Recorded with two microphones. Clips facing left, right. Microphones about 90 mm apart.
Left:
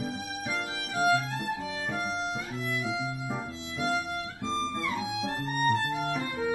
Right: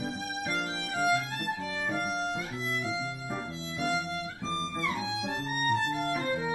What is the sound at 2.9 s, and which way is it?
Music, 20° left (ahead or behind).